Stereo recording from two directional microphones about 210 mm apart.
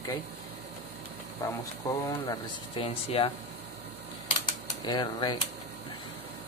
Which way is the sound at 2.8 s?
25° left (ahead or behind).